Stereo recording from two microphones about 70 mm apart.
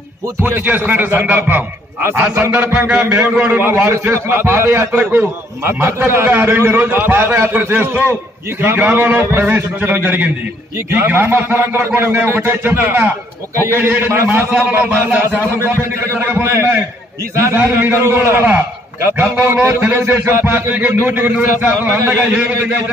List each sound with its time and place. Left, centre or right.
0.4 s a man's voice: right
5.7 s a man's voice: right
16.4 s a man's voice: right
17.6 s a man's voice: right